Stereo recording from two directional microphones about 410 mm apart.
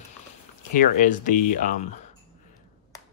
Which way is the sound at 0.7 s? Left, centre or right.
Centre.